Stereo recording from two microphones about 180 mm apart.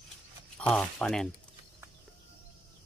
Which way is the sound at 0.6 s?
5° left (ahead or behind).